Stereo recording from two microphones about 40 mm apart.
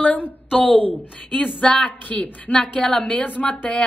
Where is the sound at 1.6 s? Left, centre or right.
Centre.